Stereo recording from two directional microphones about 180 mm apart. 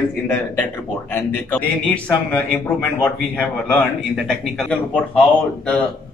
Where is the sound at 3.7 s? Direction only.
5° left (ahead or behind).